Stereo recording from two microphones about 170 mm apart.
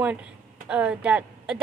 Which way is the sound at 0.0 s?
5° right (ahead or behind).